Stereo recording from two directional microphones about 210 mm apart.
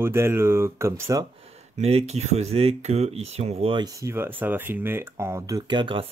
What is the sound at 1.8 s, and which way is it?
Speech, 30° right (ahead or behind).